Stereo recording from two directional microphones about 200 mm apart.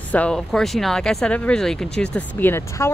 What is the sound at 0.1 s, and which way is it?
Speech, 5° left (ahead or behind).